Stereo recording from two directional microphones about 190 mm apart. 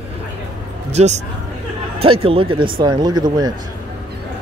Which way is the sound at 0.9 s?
35° right (ahead or behind).